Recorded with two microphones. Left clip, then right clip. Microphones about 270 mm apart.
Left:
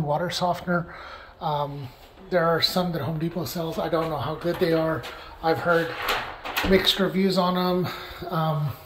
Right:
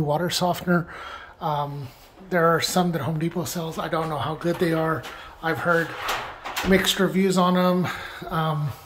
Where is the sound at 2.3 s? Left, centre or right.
Centre.